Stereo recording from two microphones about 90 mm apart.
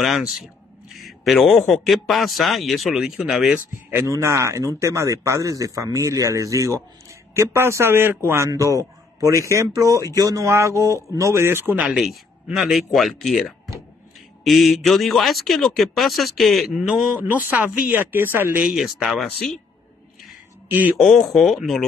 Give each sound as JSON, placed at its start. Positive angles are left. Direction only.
{"t": 0.0, "sound": "speech", "side_deg": -5}
{"t": 4.1, "sound": "speech", "side_deg": -35}
{"t": 8.5, "sound": "speech", "side_deg": -35}
{"t": 12.5, "sound": "speech", "side_deg": 0}
{"t": 17.2, "sound": "speech", "side_deg": -20}
{"t": 18.6, "sound": "speech", "side_deg": -5}
{"t": 21.0, "sound": "speech", "side_deg": 0}